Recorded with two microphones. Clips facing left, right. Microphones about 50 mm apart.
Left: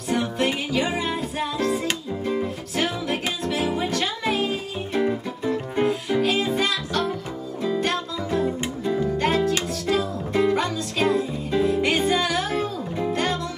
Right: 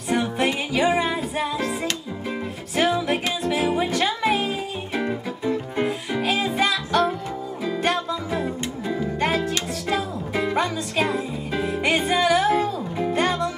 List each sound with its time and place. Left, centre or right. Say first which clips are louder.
0.1 s music: right 1 dB; centre
4.9 s music: left 3 dB; centre
8.8 s music: left 2 dB; centre